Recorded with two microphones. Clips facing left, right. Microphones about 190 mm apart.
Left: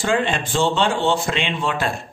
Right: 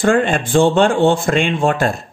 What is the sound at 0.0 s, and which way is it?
Speech, 50° right (ahead or behind).